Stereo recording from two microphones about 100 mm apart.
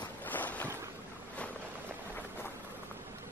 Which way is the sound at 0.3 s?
15° left (ahead or behind).